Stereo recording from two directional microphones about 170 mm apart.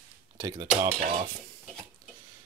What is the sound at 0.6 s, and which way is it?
Speech, 35° right (ahead or behind).